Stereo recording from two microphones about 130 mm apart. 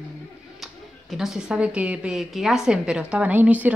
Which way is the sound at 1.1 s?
Centre (ahead or behind).